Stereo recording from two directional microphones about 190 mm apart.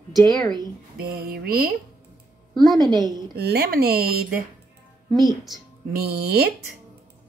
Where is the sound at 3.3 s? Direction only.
55° right (ahead or behind).